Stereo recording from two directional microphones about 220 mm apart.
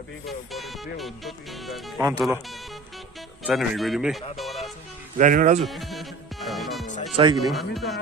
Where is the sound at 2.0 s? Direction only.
15° right (ahead or behind).